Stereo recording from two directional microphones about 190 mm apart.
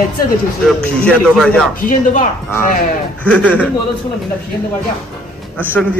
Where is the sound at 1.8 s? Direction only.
45° left (ahead or behind).